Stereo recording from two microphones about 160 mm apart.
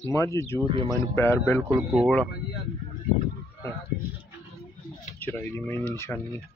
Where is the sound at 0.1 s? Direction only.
15° left (ahead or behind).